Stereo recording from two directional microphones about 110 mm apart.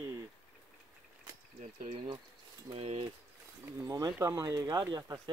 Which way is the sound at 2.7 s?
65° right (ahead or behind).